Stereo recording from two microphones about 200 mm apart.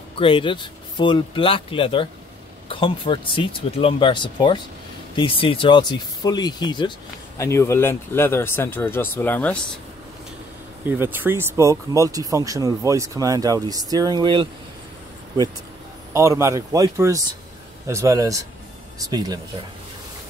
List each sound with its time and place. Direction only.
0.2 s speech: 25° left (ahead or behind); by 9.7 s 5° left (ahead or behind)
10.9 s speech: 10° right (ahead or behind)
16.1 s speech: 15° right (ahead or behind)